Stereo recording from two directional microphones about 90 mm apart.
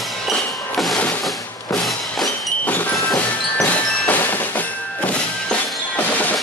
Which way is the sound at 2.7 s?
20° left (ahead or behind).